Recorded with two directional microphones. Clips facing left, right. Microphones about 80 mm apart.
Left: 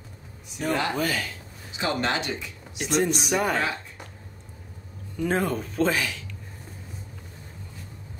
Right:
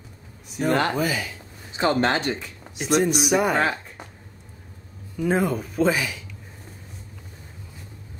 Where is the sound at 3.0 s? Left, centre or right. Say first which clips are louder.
Right 3 dB; centre.